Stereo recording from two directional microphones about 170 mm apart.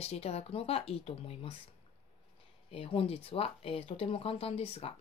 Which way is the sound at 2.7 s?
35° left (ahead or behind).